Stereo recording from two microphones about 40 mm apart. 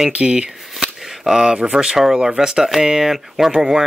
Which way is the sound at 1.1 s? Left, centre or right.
Centre.